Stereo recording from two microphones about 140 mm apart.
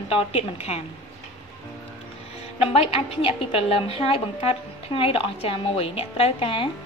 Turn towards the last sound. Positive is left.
turn(degrees=40)  # may be behind; listen again after turning